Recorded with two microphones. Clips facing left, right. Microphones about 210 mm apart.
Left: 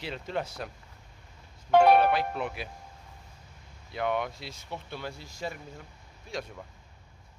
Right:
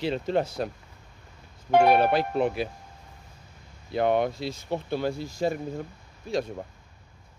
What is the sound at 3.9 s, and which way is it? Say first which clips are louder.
Speech: right 7 dB; 35° right (ahead or behind).